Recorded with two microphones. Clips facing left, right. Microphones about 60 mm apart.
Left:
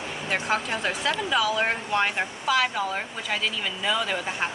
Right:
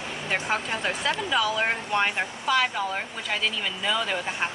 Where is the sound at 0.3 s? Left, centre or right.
Centre.